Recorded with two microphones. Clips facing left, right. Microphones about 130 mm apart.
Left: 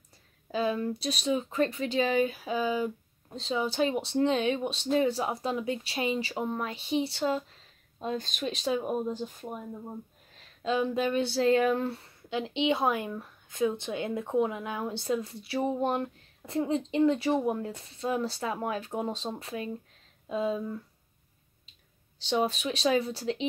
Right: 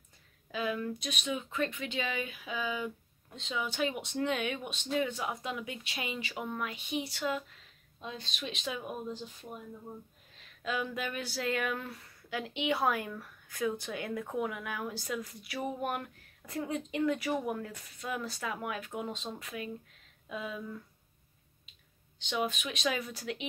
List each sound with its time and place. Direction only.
0.5 s speech: 35° left (ahead or behind); by 9.6 s 50° left (ahead or behind)
10.6 s speech: 30° left (ahead or behind)
22.2 s speech: 35° left (ahead or behind)